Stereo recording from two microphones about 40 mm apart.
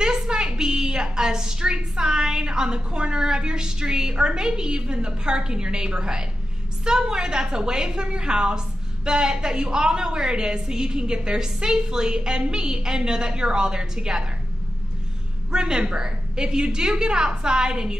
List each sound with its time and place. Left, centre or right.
0.0 s a woman's voice: centre
15.5 s a woman's voice: right